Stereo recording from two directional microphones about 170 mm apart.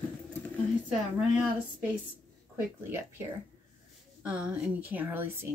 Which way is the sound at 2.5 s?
15° right (ahead or behind).